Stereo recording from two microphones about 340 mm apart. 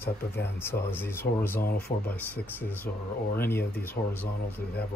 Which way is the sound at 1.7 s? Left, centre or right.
Left.